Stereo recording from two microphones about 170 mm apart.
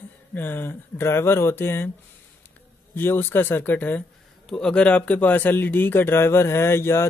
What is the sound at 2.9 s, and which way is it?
Speech, 10° left (ahead or behind).